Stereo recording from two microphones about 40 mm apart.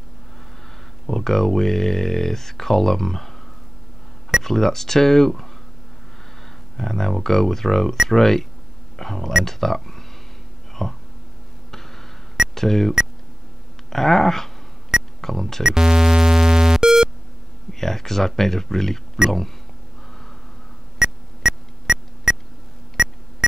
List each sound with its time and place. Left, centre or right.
1.0 s speech: centre
4.4 s speech: centre
6.8 s speech: centre
10.7 s a sound: centre
12.5 s speech: centre
15.6 s music: centre
17.7 s speech: centre
19.2 s speech: centre
21.0 s music: centre
22.3 s beep: centre